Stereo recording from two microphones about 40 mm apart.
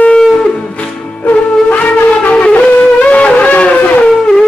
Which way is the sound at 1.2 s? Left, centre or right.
Left.